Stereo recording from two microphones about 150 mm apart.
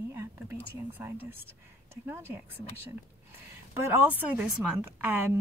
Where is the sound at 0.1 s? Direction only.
20° right (ahead or behind).